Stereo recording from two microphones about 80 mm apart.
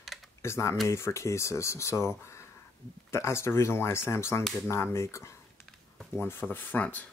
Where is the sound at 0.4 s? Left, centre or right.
Left.